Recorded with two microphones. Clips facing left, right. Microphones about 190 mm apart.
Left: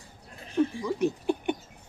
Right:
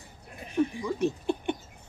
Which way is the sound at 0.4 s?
15° right (ahead or behind).